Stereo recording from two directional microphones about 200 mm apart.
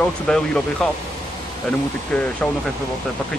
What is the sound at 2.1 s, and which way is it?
Speech, 5° left (ahead or behind).